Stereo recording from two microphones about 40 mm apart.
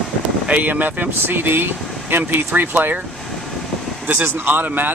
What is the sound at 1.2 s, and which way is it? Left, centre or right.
Speech, right.